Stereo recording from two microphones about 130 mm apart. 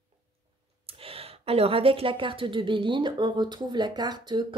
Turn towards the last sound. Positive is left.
turn(degrees=-35)  # may be behind; listen again after turning